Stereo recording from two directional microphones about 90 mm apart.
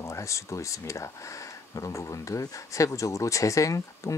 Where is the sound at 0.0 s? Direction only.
35° left (ahead or behind).